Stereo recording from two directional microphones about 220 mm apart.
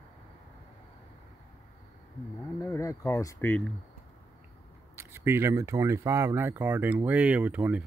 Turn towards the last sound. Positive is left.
turn(degrees=-5)  # may be behind; listen again after turning